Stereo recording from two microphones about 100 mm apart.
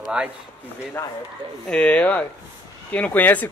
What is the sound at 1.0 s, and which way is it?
Speech, 25° left (ahead or behind).